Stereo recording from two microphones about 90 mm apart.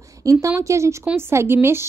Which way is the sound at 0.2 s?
40° right (ahead or behind).